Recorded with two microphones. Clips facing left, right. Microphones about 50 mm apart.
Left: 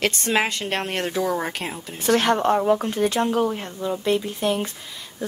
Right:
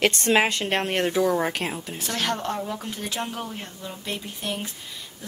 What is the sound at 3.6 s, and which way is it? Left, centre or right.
Speech, left.